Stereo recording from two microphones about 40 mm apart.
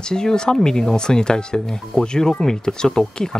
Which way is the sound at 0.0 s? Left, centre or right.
Centre.